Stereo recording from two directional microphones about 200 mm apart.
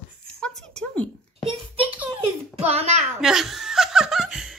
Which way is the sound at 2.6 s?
30° right (ahead or behind).